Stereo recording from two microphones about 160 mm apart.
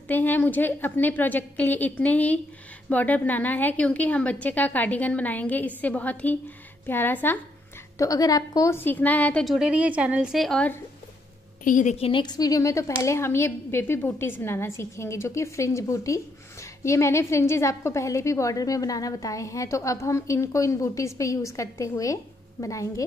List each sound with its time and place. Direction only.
0.1 s a woman's voice: 10° left (ahead or behind)
11.6 s a woman's voice: 50° left (ahead or behind); by 23.0 s 20° left (ahead or behind)